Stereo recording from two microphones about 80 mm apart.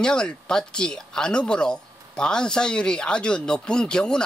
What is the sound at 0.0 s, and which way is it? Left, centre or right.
Speech, centre.